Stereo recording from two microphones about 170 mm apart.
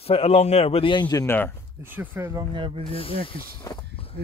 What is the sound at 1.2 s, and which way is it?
Speech, 15° left (ahead or behind).